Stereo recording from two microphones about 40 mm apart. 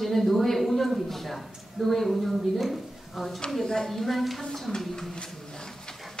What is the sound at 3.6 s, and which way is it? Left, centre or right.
A woman's voice, centre.